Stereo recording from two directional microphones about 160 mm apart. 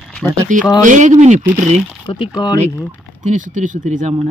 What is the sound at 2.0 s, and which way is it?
Speech, 30° left (ahead or behind).